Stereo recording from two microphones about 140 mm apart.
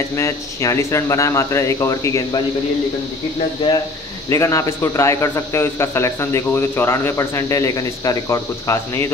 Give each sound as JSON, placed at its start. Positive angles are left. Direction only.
{"t": 0.1, "sound": "speech", "side_deg": 20}
{"t": 4.3, "sound": "speech", "side_deg": 20}